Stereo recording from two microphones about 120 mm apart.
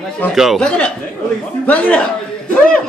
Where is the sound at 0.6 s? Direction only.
10° left (ahead or behind).